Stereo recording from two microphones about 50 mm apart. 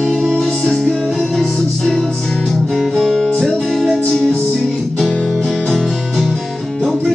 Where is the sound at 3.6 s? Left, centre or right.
Centre.